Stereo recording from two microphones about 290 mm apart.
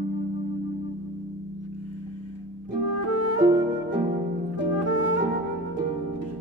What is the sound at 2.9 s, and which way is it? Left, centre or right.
Music, left.